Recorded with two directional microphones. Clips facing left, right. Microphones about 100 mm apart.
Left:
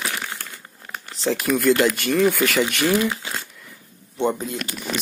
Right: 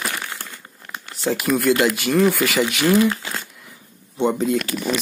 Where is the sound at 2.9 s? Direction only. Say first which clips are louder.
Right 4 dB; 15° left (ahead or behind).